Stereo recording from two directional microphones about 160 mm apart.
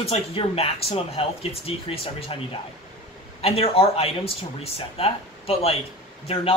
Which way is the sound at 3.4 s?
35° left (ahead or behind).